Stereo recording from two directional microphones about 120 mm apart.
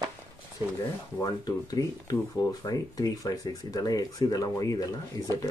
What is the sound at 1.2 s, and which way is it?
Speech, 30° left (ahead or behind).